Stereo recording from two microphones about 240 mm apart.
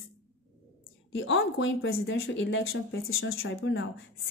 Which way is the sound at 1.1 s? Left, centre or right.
Left.